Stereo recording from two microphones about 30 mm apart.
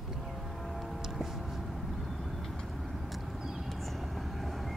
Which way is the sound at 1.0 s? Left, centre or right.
Centre.